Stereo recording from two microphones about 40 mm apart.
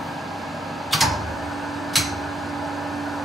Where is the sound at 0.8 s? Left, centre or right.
Centre.